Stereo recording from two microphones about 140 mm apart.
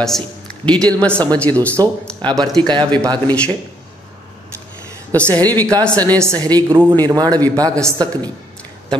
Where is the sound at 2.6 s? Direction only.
30° right (ahead or behind).